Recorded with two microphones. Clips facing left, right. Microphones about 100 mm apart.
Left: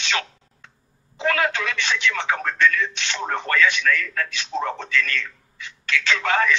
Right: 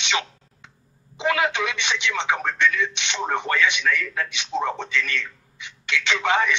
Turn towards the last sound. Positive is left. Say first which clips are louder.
# left 1 dB
turn(degrees=-20)  # may be behind; listen again after turning